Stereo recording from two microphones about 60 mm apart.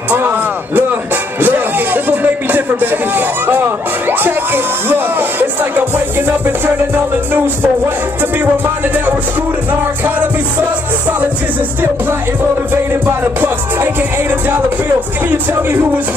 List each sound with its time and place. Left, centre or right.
0.1 s music: right
1.4 s a sound: right
8.2 s music: right
13.0 s music: right